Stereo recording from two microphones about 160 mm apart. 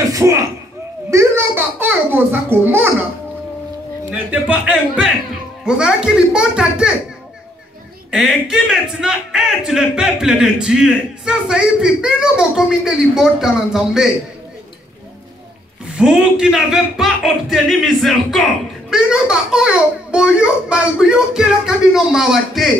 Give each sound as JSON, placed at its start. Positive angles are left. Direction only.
{"t": 0.0, "sound": "a sound", "side_deg": -20}
{"t": 4.1, "sound": "speech", "side_deg": -10}
{"t": 8.5, "sound": "speech", "side_deg": -5}
{"t": 16.0, "sound": "speech", "side_deg": -5}